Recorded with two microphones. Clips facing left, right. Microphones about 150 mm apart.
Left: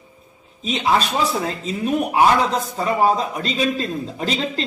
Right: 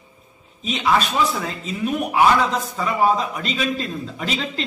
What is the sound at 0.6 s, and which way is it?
Speech, 35° left (ahead or behind).